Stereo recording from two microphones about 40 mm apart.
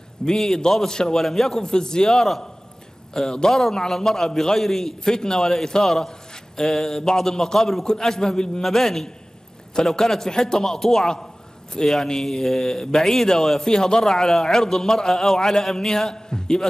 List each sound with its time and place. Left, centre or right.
0.2 s a man's voice: centre
5.8 s a sound: centre
6.7 s a man's voice: centre